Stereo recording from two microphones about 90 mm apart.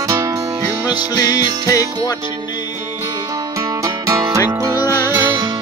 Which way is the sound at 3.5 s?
40° right (ahead or behind).